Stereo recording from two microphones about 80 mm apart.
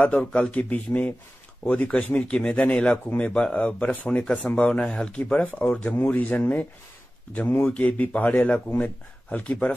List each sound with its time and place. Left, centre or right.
0.0 s speech: centre